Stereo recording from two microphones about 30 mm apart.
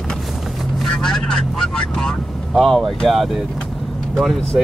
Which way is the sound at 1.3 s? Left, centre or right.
Centre.